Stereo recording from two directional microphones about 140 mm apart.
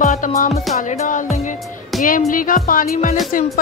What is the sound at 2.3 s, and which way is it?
Music, 75° left (ahead or behind).